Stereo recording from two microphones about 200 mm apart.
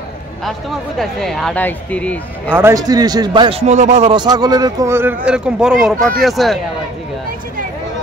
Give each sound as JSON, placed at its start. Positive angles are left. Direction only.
{"t": 0.9, "sound": "speech", "side_deg": 0}
{"t": 2.5, "sound": "a man's voice", "side_deg": -15}